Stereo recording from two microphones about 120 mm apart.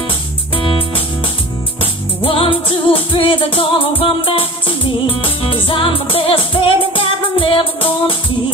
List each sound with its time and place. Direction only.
1.8 s music: 50° left (ahead or behind)